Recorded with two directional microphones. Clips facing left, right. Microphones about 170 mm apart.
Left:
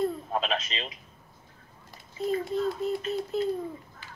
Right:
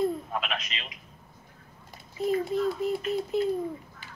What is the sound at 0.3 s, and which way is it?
Speech, 30° left (ahead or behind).